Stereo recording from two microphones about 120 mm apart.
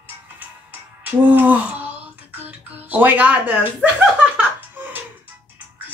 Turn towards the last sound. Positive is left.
turn(degrees=-15)  # may be behind; listen again after turning